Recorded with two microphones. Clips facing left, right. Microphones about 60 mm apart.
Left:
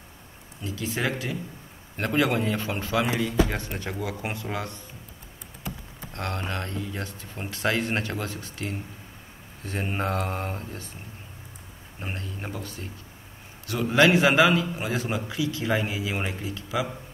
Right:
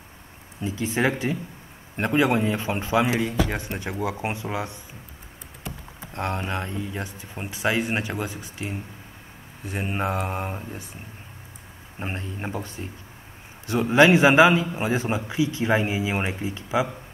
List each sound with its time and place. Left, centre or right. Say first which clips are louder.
0.6 s a man's voice: right 5 dB; right
6.1 s speech: right 3 dB; centre
12.0 s a man's voice: right 4 dB; right